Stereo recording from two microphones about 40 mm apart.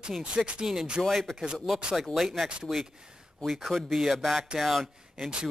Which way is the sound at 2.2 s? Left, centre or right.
Centre.